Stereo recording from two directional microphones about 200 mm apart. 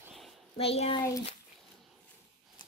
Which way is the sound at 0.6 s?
30° left (ahead or behind).